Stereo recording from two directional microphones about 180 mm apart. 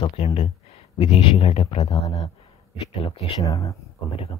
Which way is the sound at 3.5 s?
20° left (ahead or behind).